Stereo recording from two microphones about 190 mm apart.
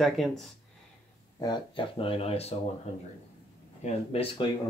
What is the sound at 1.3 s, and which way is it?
Speech, 20° left (ahead or behind).